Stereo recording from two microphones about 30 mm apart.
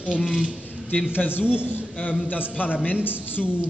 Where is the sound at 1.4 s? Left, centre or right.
Right.